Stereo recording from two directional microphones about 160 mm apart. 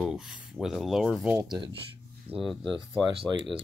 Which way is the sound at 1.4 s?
25° right (ahead or behind).